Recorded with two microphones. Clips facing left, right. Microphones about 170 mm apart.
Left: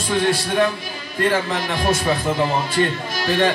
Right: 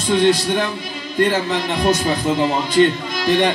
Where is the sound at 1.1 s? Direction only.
20° right (ahead or behind).